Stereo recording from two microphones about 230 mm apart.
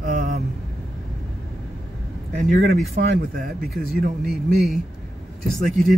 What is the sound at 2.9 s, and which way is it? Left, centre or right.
Speech, right.